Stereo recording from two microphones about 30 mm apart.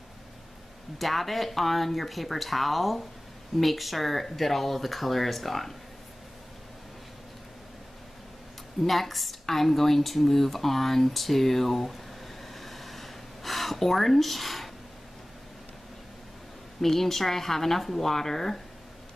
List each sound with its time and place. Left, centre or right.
0.9 s speech: centre
8.8 s speech: centre
12.5 s a sound: centre
16.8 s speech: centre